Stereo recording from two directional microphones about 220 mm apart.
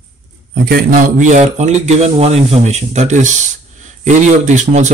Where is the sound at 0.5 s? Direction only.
45° right (ahead or behind).